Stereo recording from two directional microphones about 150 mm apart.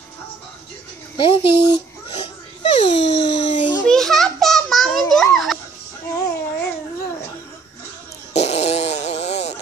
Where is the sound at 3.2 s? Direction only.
35° left (ahead or behind).